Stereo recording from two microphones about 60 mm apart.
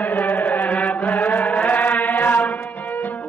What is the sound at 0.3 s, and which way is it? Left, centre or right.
Chant, left.